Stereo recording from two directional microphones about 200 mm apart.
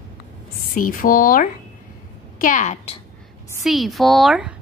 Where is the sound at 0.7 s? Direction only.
45° left (ahead or behind).